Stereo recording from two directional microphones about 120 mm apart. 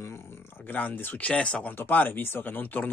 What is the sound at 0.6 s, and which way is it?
Speech, 15° left (ahead or behind).